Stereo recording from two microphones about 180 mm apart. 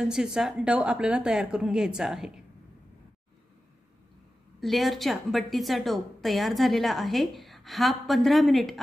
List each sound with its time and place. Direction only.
0.0 s a woman's voice: 5° right (ahead or behind)
4.6 s a woman's voice: centre (ahead or behind)